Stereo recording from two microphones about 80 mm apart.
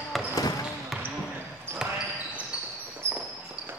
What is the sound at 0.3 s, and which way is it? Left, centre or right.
Basketball bounce, left.